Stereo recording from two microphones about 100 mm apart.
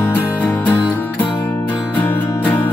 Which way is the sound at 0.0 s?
20° left (ahead or behind).